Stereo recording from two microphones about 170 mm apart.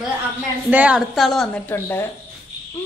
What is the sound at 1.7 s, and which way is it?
Speech, 15° left (ahead or behind).